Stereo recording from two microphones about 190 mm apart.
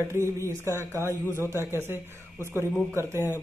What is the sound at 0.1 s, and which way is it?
A man's voice, 15° right (ahead or behind).